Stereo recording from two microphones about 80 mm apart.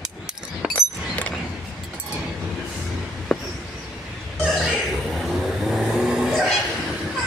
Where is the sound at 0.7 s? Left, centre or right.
Centre.